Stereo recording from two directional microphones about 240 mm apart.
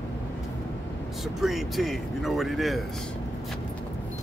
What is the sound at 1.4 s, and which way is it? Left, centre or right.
Speech, centre.